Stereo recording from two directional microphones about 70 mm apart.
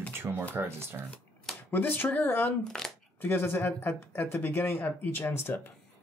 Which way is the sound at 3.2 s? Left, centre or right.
Left.